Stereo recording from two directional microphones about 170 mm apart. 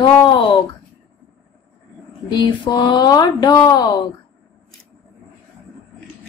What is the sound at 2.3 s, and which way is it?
Speech, 25° left (ahead or behind).